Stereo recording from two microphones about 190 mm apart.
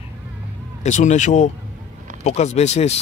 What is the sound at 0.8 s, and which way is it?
Speech, 40° left (ahead or behind).